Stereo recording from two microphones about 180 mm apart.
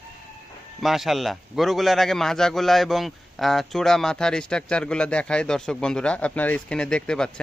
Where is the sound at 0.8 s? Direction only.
Centre (ahead or behind).